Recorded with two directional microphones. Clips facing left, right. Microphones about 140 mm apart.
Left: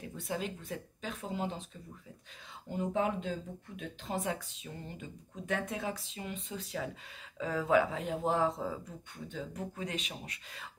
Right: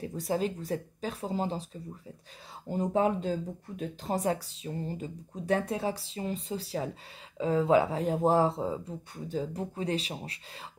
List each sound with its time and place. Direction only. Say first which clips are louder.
0.0 s speech: right 7 dB; 40° right (ahead or behind)
2.7 s speech: right 5 dB; 35° right (ahead or behind)
9.1 s speech: right 8 dB; 35° right (ahead or behind)